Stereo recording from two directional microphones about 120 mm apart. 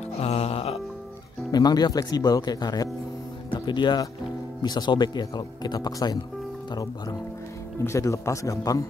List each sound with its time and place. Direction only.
0.2 s music: 55° left (ahead or behind)
1.5 s a man's voice: 35° left (ahead or behind)